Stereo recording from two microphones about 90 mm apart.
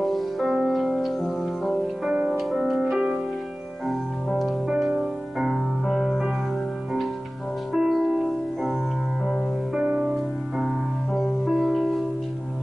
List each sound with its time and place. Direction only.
0.0 s music: centre (ahead or behind)
7.7 s music: 5° right (ahead or behind)
9.8 s music: 20° right (ahead or behind)
11.1 s music: centre (ahead or behind)